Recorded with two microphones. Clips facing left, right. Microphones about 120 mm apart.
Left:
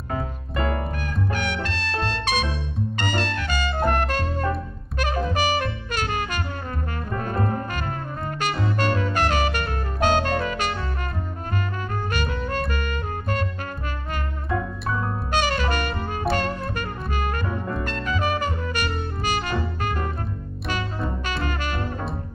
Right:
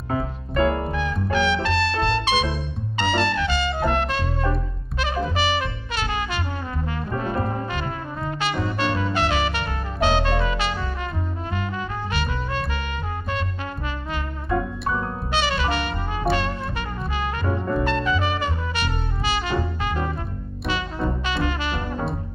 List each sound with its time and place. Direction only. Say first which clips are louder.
0.6 s music: right 5 dB; 30° right (ahead or behind)
0.9 s music: right 5 dB; 45° left (ahead or behind)
12.1 s music: left 2 dB; 45° left (ahead or behind)
15.3 s music: even; 45° left (ahead or behind)
18.0 s brass instrument: right 1 dB; 45° left (ahead or behind)
21.3 s music: right 2 dB; 45° left (ahead or behind)